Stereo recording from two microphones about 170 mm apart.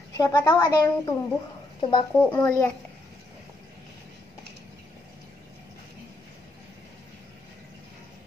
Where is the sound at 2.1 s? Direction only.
10° left (ahead or behind).